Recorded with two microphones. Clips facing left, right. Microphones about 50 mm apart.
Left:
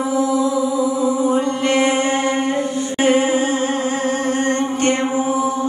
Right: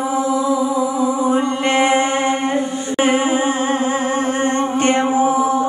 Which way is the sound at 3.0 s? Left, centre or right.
Right.